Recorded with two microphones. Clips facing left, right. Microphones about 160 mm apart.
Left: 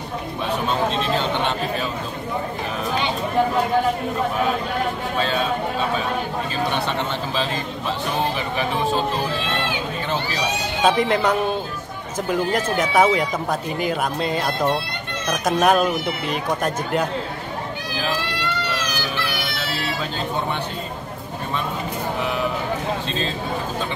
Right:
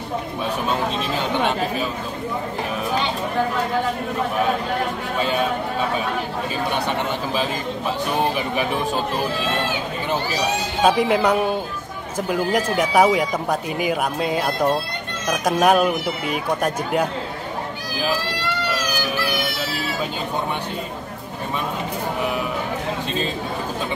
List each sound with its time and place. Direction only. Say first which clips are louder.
10.8 s speech: right 1 dB; 10° right (ahead or behind)
12.7 s speech: right 1 dB; 10° right (ahead or behind)
19.6 s a sound: right 1 dB; 10° right (ahead or behind)